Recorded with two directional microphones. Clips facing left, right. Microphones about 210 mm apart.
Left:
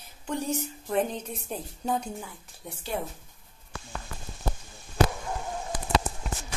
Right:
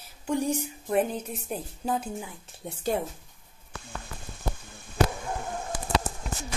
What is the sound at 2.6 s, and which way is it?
Speech, 25° right (ahead or behind).